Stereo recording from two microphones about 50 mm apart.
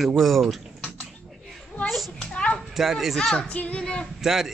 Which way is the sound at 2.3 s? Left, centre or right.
Left.